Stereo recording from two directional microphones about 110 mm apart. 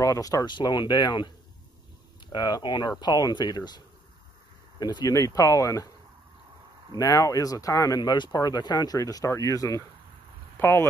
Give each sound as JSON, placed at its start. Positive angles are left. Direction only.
{"t": 0.0, "sound": "speech", "side_deg": 30}
{"t": 2.3, "sound": "speech", "side_deg": 40}
{"t": 7.0, "sound": "speech", "side_deg": 30}